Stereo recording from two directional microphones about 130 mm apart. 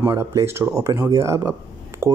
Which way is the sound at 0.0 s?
20° right (ahead or behind).